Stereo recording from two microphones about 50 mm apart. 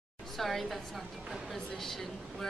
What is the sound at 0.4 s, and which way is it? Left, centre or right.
Speech, centre.